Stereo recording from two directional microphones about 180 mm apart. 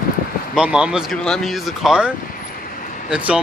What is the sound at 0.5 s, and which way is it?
Speech, 5° right (ahead or behind).